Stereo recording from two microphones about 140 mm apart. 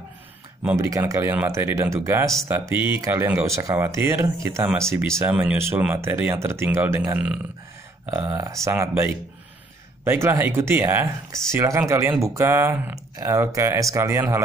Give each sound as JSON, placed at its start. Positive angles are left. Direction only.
{"t": 0.7, "sound": "speech", "side_deg": -25}